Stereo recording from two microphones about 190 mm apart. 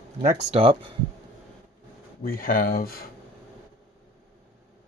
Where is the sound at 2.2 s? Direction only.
50° left (ahead or behind).